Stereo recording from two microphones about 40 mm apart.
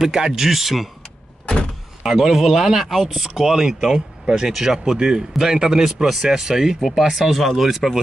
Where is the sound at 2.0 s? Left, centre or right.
Centre.